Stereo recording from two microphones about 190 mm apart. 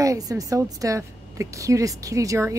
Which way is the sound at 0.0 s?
20° right (ahead or behind).